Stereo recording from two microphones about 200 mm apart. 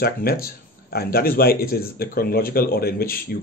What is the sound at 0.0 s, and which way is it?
Speech, 50° left (ahead or behind).